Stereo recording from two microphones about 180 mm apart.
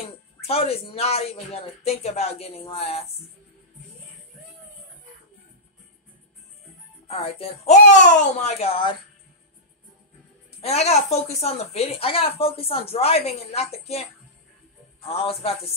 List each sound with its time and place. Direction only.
0.4 s speech: 35° left (ahead or behind)
7.1 s speech: 35° left (ahead or behind)
10.6 s speech: 35° left (ahead or behind)
15.0 s speech: 35° left (ahead or behind)